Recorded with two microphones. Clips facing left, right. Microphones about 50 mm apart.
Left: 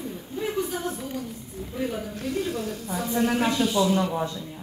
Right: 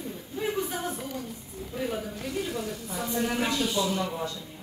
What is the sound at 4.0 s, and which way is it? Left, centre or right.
Speech, left.